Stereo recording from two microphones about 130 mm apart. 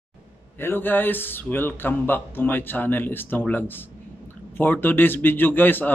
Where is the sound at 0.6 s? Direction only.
15° left (ahead or behind).